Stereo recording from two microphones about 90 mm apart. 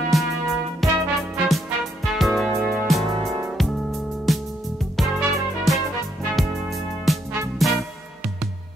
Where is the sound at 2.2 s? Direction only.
Centre (ahead or behind).